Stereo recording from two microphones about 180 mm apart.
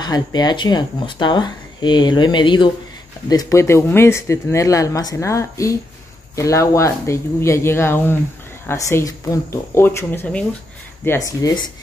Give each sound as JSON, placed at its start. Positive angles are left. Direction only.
{"t": 0.0, "sound": "speech", "side_deg": 20}